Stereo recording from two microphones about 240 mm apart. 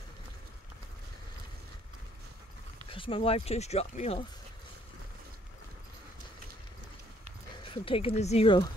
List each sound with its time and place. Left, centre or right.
2.9 s speech: left
7.6 s speech: left